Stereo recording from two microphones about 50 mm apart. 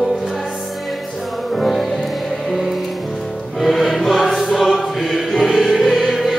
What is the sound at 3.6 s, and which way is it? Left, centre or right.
Choir, centre.